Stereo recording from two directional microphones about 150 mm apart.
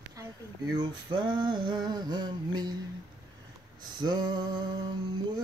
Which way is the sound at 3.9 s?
30° right (ahead or behind).